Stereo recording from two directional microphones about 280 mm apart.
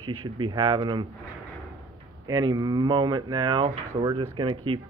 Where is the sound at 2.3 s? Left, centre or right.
Centre.